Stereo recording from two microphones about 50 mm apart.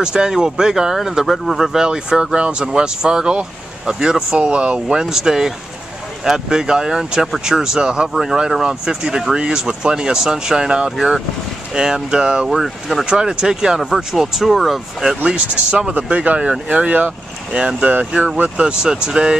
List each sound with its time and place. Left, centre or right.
0.0 s speech: centre
1.2 s speech: centre
12.4 s speech: centre
13.0 s speech: centre
15.2 s speech: right